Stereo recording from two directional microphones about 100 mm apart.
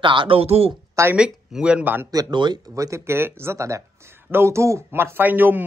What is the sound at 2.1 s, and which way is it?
Speech, 40° right (ahead or behind).